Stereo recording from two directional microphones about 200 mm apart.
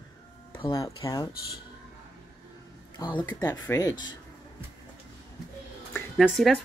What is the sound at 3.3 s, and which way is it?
Speech, 15° left (ahead or behind).